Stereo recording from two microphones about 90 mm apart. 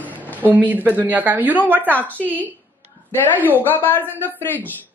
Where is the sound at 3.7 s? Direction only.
25° left (ahead or behind).